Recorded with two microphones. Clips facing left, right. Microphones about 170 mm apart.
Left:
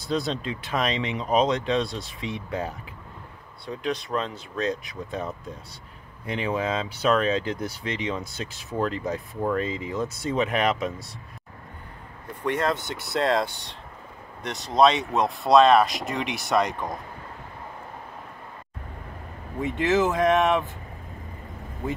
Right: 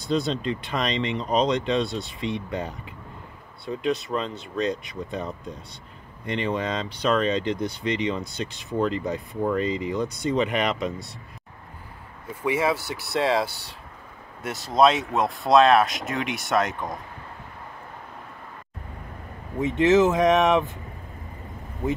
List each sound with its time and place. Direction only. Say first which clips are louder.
0.0 s speech: right 2 dB; centre (ahead or behind)
12.4 s speech: right 2 dB; 5° right (ahead or behind)
19.6 s speech: right 4 dB; 20° right (ahead or behind)